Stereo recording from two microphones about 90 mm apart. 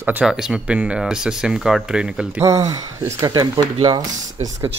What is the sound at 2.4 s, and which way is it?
Speech, 35° right (ahead or behind).